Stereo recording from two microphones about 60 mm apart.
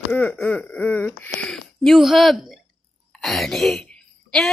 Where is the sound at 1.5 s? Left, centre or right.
Centre.